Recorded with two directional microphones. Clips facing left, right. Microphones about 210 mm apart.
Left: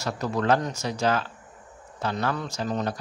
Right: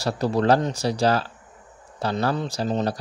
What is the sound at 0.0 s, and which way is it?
Speech, 35° right (ahead or behind).